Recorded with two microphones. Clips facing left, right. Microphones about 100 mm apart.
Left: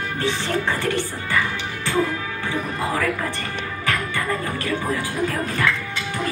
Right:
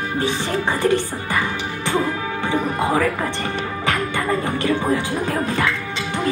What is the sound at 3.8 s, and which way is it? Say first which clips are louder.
Music: right 2 dB; 20° right (ahead or behind).